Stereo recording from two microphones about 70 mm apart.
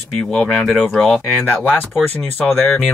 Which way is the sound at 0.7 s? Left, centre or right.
Centre.